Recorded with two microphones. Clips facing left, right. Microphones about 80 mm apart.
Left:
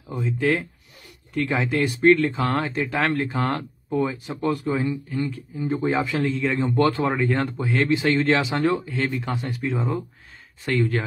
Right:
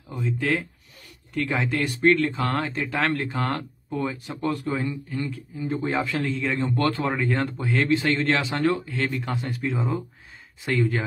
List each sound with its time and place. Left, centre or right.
0.1 s speech: centre
5.6 s speech: centre
5.9 s speech: centre
6.6 s speech: centre
7.1 s speech: centre